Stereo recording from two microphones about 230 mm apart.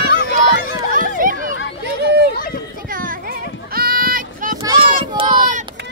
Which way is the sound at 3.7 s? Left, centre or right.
Right.